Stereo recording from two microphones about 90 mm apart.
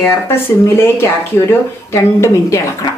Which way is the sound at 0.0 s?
25° left (ahead or behind).